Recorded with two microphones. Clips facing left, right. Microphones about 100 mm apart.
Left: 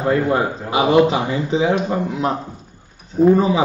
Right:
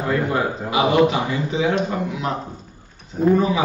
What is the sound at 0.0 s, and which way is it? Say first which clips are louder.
A man's voice: left 4 dB; 30° left (ahead or behind).